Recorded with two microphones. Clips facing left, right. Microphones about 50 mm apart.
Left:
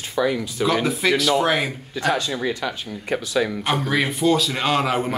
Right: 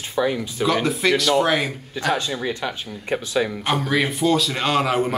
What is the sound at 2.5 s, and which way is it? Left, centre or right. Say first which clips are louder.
Speech: even; right.